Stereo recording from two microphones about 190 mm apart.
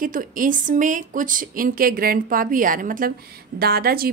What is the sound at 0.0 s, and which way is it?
A woman's voice, 45° right (ahead or behind).